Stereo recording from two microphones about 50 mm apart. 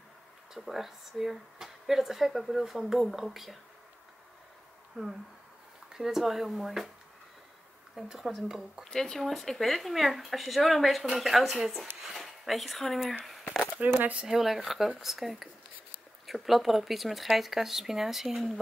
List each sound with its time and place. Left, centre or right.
0.6 s speech: centre
5.0 s speech: centre
5.9 s speech: centre
7.9 s speech: centre
8.9 s speech: centre
13.2 s a sound: centre
13.8 s speech: right
14.2 s speech: centre